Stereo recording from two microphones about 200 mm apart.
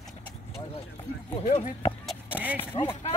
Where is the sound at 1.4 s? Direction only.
35° left (ahead or behind).